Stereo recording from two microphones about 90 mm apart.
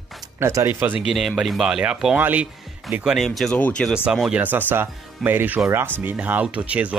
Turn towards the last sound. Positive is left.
turn(degrees=-15)  # may be behind; listen again after turning